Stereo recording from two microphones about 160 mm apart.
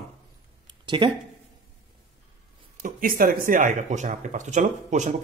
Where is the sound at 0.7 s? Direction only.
30° right (ahead or behind).